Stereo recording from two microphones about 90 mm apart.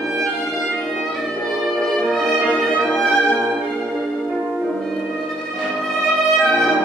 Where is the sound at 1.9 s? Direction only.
5° left (ahead or behind).